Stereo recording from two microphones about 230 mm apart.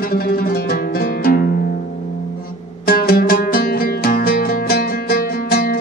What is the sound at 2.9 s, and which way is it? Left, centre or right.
Music, left.